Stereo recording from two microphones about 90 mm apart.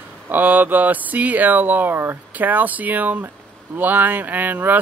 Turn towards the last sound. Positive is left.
turn(degrees=-20)  # may be behind; listen again after turning